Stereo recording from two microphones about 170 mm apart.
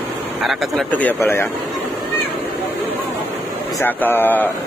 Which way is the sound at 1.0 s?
10° left (ahead or behind).